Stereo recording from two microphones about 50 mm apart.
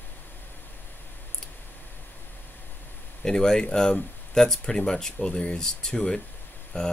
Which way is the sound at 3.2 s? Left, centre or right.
Centre.